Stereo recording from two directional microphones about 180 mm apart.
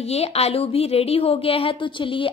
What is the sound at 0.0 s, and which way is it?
A woman's voice, 35° left (ahead or behind).